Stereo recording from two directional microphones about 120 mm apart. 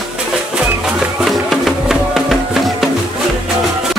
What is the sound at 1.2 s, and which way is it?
Music, centre (ahead or behind).